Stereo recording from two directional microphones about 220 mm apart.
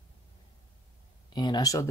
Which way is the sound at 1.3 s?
20° left (ahead or behind).